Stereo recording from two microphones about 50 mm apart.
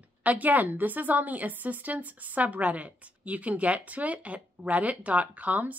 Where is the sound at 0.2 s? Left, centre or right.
Right.